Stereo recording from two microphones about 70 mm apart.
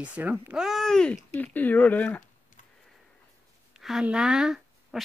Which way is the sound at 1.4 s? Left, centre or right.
Left.